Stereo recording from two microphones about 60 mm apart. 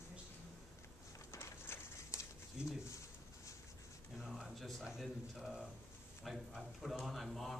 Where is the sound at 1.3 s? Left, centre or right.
Left.